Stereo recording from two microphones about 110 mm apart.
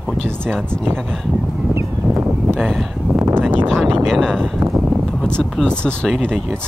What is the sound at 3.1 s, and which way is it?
Speech, 20° right (ahead or behind).